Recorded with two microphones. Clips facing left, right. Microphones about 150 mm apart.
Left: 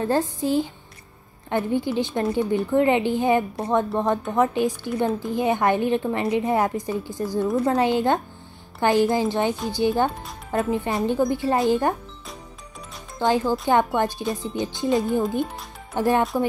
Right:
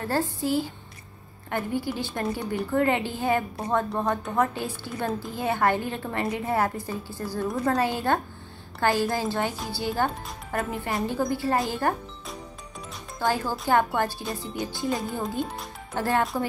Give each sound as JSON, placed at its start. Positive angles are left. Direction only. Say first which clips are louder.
{"t": 0.0, "sound": "a woman's voice", "louder": "left 4 dB", "side_deg": 20}
{"t": 13.2, "sound": "a woman's voice", "louder": "left 5 dB", "side_deg": 20}